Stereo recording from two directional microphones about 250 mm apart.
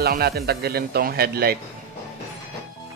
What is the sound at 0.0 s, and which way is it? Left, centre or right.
Speech, right.